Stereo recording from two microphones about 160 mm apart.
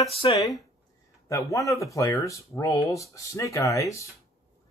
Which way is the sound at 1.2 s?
20° left (ahead or behind).